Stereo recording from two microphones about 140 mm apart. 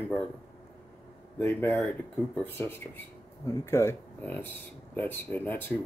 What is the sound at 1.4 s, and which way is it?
Speech, 15° left (ahead or behind).